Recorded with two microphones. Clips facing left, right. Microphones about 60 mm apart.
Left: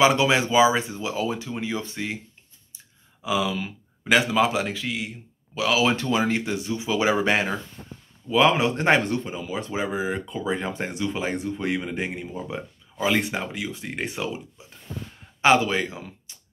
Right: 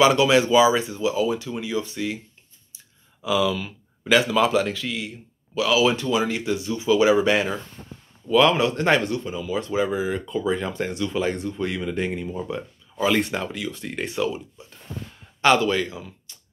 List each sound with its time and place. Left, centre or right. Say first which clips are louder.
0.0 s speech: right 2 dB; left
3.2 s speech: right 3 dB; left
15.4 s speech: even; left
16.3 s a sound: even; left